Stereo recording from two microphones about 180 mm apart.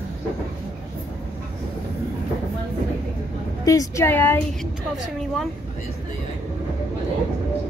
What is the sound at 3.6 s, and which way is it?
Speech, 15° left (ahead or behind).